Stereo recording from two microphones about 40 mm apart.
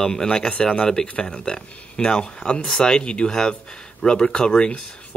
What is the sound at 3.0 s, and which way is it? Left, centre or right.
Speech, left.